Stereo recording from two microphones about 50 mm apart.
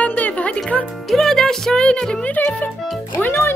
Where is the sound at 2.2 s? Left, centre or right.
Left.